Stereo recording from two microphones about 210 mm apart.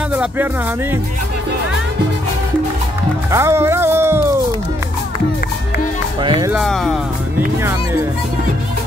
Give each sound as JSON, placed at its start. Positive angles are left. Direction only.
{"t": 0.1, "sound": "speech", "side_deg": -5}
{"t": 3.3, "sound": "music", "side_deg": -15}
{"t": 6.2, "sound": "speech", "side_deg": -20}
{"t": 6.5, "sound": "speech", "side_deg": 0}
{"t": 7.3, "sound": "music", "side_deg": -10}